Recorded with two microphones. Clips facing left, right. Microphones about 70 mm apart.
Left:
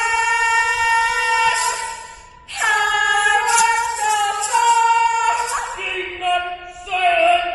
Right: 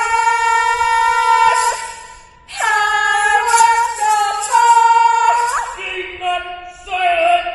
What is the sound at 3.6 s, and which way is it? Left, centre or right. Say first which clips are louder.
Music: right 5 dB; centre.